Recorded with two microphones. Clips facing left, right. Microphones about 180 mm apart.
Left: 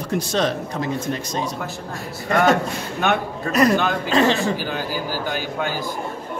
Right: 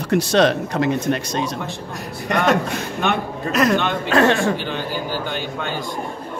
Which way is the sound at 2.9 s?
Centre (ahead or behind).